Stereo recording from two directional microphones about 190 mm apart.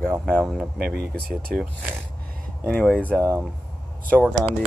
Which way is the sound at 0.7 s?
55° right (ahead or behind).